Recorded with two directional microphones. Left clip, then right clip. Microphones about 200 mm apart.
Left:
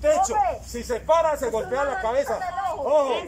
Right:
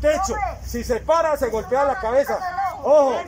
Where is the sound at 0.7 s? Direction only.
10° right (ahead or behind).